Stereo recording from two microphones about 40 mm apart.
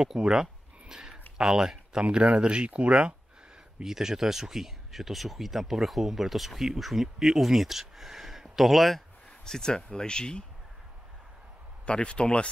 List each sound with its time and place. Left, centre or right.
0.0 s a sound: centre
1.4 s speech: centre
2.0 s speech: right
3.8 s speech: centre
9.4 s speech: centre
11.8 s speech: left